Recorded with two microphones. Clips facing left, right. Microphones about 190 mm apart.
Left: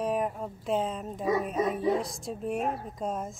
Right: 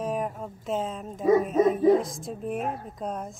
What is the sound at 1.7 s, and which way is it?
Speech, 45° right (ahead or behind).